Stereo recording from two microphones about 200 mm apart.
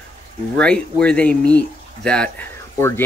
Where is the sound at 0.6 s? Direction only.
5° left (ahead or behind).